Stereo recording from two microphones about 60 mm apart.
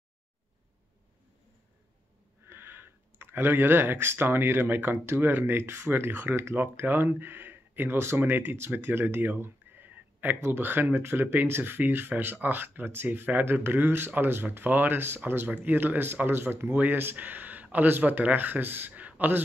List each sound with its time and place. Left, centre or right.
2.4 s speech: right